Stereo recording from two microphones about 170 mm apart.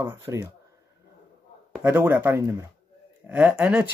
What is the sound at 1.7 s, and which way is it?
Speech, 10° right (ahead or behind).